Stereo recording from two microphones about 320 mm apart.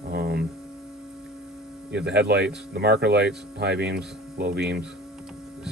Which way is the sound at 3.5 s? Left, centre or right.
Right.